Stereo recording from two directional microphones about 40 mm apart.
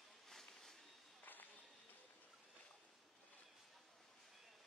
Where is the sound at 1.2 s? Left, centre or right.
Left.